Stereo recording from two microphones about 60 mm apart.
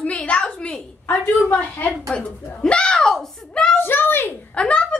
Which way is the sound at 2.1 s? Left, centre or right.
Centre.